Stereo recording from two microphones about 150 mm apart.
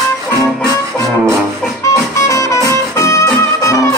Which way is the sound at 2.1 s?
20° left (ahead or behind).